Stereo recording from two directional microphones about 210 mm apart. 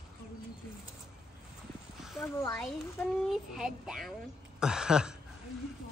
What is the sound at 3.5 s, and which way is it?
Speech, centre (ahead or behind).